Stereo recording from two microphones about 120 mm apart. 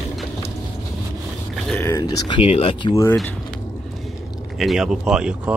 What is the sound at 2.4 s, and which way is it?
Speech, 50° left (ahead or behind).